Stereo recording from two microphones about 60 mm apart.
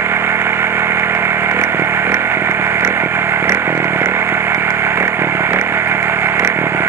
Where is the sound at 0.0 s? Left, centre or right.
Right.